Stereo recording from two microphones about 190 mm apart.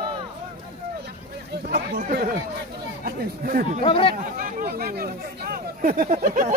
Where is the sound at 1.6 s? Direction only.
55° right (ahead or behind).